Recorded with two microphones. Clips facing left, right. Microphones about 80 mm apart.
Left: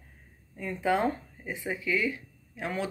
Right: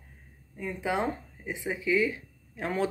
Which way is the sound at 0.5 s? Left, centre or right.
Centre.